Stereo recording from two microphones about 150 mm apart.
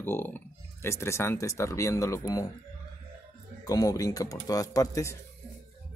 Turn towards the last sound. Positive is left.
turn(degrees=20)  # may be behind; listen again after turning